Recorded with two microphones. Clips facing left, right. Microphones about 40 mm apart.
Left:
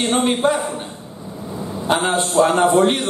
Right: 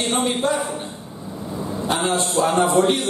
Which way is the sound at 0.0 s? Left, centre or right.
Centre.